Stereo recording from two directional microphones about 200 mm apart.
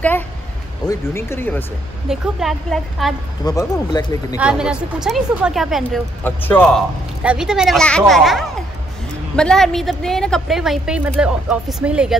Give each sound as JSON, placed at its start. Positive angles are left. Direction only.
{"t": 0.8, "sound": "speech", "side_deg": 10}
{"t": 2.0, "sound": "a woman's voice", "side_deg": 0}
{"t": 3.4, "sound": "speech", "side_deg": 20}
{"t": 4.4, "sound": "a woman's voice", "side_deg": -5}
{"t": 6.2, "sound": "speech", "side_deg": 10}
{"t": 7.2, "sound": "a woman's voice", "side_deg": -5}